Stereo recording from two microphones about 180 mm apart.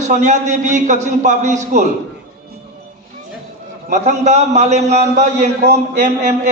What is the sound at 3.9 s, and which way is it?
A man's voice, 40° right (ahead or behind).